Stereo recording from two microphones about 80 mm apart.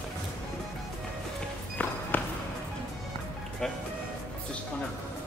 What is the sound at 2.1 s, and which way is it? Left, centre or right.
Basketball bounce, left.